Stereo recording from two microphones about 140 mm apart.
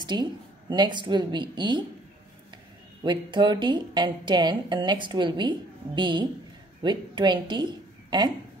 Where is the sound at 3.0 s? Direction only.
35° right (ahead or behind).